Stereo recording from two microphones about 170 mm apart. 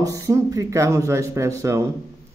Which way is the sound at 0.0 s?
20° right (ahead or behind).